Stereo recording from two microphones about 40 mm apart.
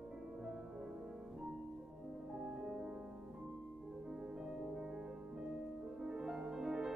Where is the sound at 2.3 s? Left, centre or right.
Centre.